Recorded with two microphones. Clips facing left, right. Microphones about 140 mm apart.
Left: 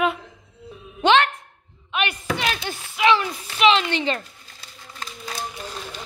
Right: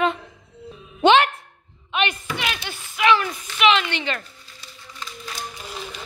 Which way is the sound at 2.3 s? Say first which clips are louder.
Left 3 dB; 35° left (ahead or behind).